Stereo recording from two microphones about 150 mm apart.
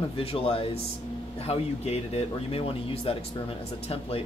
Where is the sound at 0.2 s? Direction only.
40° left (ahead or behind).